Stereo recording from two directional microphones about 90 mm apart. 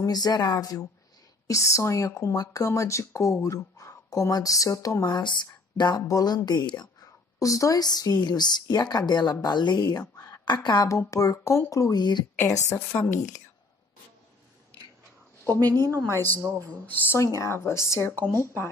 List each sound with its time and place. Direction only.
0.0 s speech: 45° left (ahead or behind)
5.0 s speech: 55° left (ahead or behind)
7.3 s speech: 40° left (ahead or behind)
10.4 s a woman's voice: 55° left (ahead or behind)
10.9 s speech: 35° left (ahead or behind)
12.0 s speech: 55° left (ahead or behind)
12.4 s speech: 35° left (ahead or behind)
15.4 s a woman's voice: 40° right (ahead or behind)
17.1 s speech: 35° left (ahead or behind)